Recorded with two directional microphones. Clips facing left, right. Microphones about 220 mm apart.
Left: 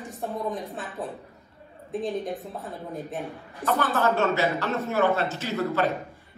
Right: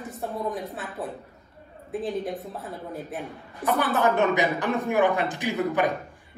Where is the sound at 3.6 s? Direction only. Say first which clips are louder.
Right 1 dB; 15° right (ahead or behind).